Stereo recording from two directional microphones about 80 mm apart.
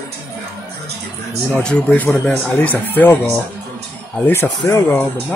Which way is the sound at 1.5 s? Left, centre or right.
Centre.